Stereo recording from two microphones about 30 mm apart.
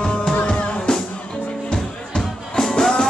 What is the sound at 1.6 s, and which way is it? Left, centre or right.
Music, left.